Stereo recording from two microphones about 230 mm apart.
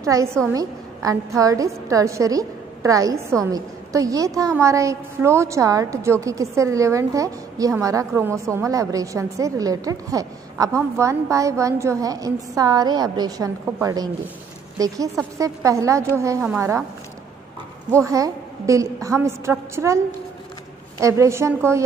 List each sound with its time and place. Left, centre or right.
0.0 s a woman's voice: centre
17.9 s a woman's voice: centre
21.0 s a woman's voice: centre